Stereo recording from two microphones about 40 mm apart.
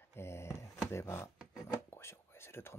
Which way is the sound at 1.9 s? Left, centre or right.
Left.